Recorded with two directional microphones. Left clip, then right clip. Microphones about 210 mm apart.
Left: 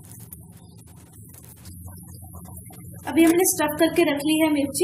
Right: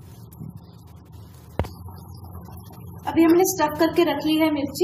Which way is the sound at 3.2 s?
35° left (ahead or behind).